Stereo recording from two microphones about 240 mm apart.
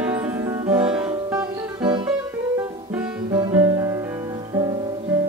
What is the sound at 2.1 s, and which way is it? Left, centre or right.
Music, centre.